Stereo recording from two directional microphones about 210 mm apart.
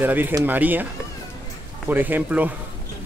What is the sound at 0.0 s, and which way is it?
Speech, 10° right (ahead or behind).